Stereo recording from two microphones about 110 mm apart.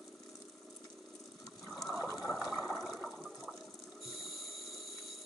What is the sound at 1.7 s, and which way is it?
Boat, 5° right (ahead or behind).